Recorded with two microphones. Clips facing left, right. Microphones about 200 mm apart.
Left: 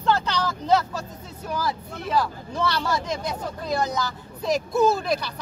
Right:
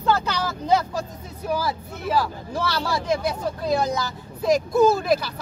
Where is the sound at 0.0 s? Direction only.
5° right (ahead or behind).